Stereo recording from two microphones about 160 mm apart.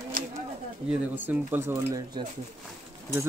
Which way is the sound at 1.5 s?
15° right (ahead or behind).